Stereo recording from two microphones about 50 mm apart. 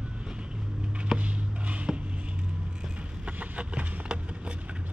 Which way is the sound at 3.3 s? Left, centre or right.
Right.